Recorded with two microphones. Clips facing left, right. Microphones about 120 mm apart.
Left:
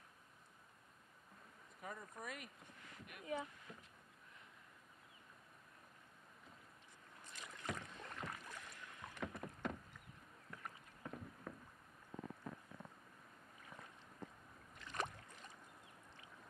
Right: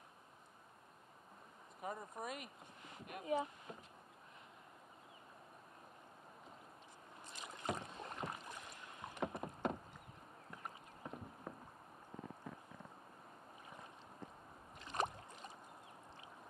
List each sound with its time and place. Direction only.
1.8 s speech: 20° right (ahead or behind)
7.2 s rowboat: 25° right (ahead or behind)
14.8 s boat: 25° right (ahead or behind)